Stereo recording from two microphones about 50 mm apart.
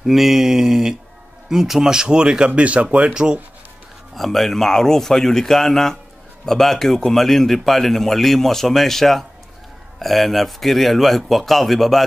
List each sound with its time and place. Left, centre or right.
0.0 s speech: centre; by 3.1 s right
3.1 s speech: centre
4.1 s a man's voice: centre